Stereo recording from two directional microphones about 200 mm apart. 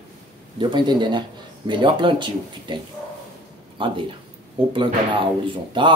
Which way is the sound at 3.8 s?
25° right (ahead or behind).